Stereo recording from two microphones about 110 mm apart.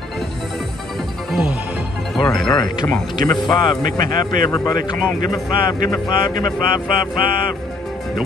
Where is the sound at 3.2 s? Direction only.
40° left (ahead or behind).